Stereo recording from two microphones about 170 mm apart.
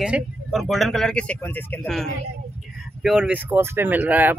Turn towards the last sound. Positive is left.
turn(degrees=-10)  # may be behind; listen again after turning